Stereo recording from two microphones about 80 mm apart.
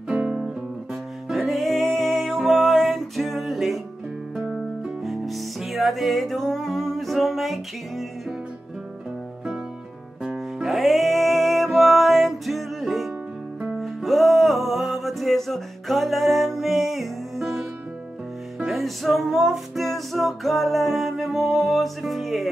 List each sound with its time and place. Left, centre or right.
0.1 s music: centre
1.3 s music: centre
4.8 s music: centre
10.2 s music: centre
18.7 s music: centre